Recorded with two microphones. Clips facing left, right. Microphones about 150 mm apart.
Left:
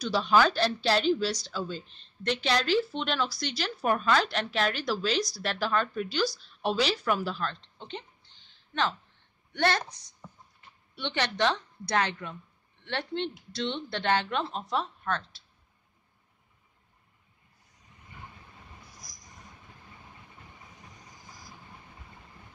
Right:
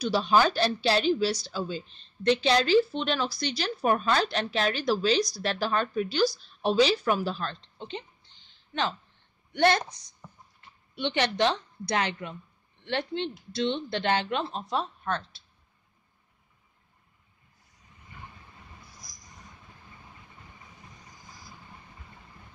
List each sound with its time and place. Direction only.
0.0 s a woman's voice: 15° right (ahead or behind)
9.5 s a woman's voice: 15° right (ahead or behind)
11.0 s a woman's voice: 15° right (ahead or behind)
13.5 s a woman's voice: 10° right (ahead or behind)